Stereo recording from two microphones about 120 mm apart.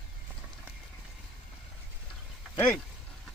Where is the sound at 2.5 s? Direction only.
15° left (ahead or behind).